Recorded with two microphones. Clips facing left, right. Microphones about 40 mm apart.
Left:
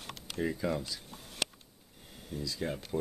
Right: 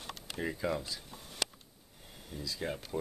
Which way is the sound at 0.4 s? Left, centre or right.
Centre.